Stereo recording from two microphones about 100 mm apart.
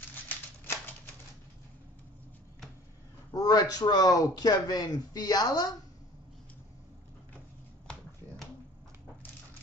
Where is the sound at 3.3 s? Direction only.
40° left (ahead or behind).